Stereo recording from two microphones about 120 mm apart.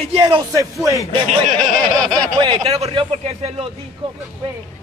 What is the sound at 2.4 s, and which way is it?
Speech, 45° right (ahead or behind).